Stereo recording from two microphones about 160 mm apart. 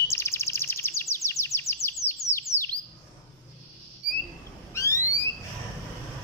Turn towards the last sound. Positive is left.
turn(degrees=20)  # may be behind; listen again after turning